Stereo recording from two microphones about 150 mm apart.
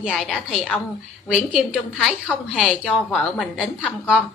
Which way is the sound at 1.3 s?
5° right (ahead or behind).